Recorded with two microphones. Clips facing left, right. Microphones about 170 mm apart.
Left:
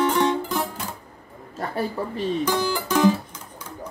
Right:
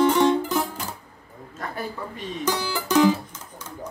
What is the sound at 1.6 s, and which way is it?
Speech, 30° left (ahead or behind).